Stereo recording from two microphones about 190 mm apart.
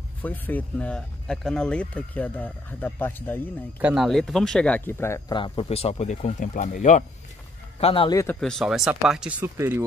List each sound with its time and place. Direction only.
0.2 s speech: 10° left (ahead or behind)
3.8 s speech: centre (ahead or behind)
5.3 s speech: 25° left (ahead or behind)
7.8 s a man's voice: 25° left (ahead or behind)
8.4 s speech: centre (ahead or behind)
9.6 s speech: 15° right (ahead or behind)